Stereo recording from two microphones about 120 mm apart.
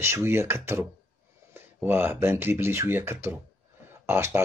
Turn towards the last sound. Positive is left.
turn(degrees=-20)  # may be behind; listen again after turning